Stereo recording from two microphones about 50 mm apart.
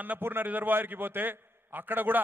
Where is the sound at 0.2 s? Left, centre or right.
Right.